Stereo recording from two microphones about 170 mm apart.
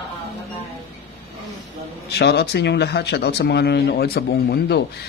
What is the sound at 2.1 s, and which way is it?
Speech, 75° left (ahead or behind).